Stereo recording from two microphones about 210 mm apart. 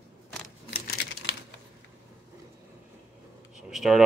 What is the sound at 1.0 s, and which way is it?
Typewriter, 50° left (ahead or behind).